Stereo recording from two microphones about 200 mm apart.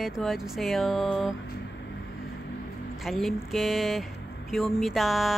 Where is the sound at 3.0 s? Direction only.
Centre (ahead or behind).